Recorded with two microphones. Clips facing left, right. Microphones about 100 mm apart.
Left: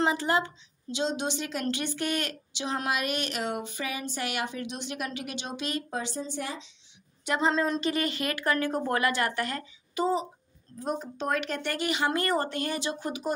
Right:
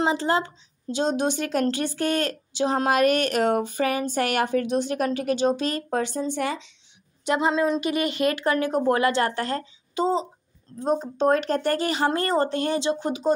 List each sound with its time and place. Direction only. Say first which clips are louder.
0.0 s a woman's voice: right 3 dB; 25° right (ahead or behind); by 6.7 s 65° right (ahead or behind)
7.2 s a woman's voice: right 4 dB; 15° right (ahead or behind)